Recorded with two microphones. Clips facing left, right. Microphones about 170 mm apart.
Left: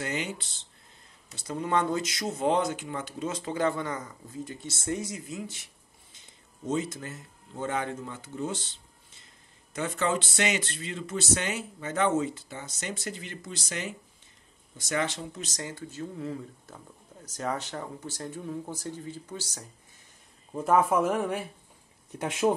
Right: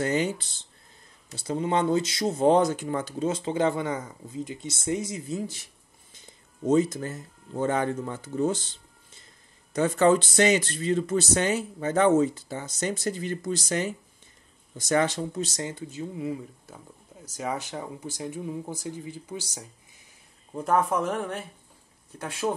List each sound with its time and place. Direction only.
0.0 s speech: 40° right (ahead or behind)
1.3 s speech: 30° right (ahead or behind)
5.4 s speech: 35° right (ahead or behind)
6.7 s speech: 40° right (ahead or behind)
9.7 s speech: 40° right (ahead or behind); by 19.6 s 10° right (ahead or behind)
20.5 s speech: centre (ahead or behind)
22.2 s speech: 20° left (ahead or behind)